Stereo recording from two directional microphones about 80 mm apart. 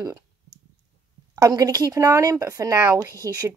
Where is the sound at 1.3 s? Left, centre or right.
Right.